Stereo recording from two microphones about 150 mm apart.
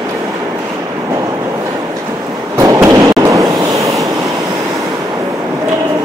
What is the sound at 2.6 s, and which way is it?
Train, 20° right (ahead or behind).